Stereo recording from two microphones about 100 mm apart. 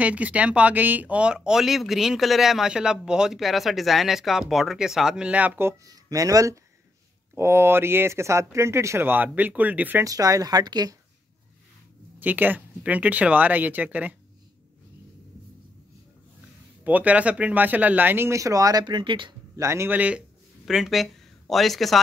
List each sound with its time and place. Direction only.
0.0 s speech: 15° right (ahead or behind)
5.9 s speech: 35° right (ahead or behind); by 10.0 s 15° right (ahead or behind)
10.0 s speech: 35° right (ahead or behind)
12.2 s speech: 20° right (ahead or behind)
16.8 s speech: 15° right (ahead or behind); by 19.3 s 55° right (ahead or behind)
19.5 s speech: 30° right (ahead or behind)
19.9 s speech: 15° right (ahead or behind)
20.6 s speech: centre (ahead or behind)